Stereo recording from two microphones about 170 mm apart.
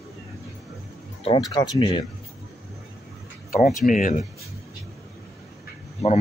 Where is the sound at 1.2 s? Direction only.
25° left (ahead or behind).